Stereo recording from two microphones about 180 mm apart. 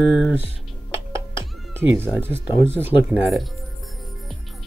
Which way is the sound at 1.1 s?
15° right (ahead or behind).